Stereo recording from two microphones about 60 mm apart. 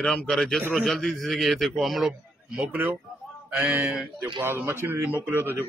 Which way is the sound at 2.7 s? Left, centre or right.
Right.